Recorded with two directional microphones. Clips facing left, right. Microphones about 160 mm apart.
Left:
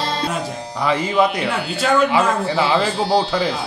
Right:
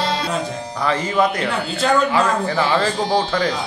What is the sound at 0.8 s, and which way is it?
A man's voice, 15° left (ahead or behind).